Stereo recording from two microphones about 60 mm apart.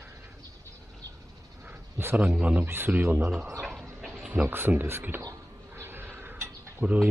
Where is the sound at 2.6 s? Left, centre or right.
Right.